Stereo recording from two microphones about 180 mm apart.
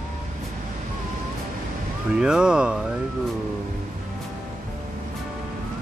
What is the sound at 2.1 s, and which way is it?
Speech, 5° right (ahead or behind).